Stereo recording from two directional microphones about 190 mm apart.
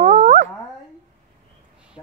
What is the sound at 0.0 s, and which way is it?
Dog, 35° right (ahead or behind).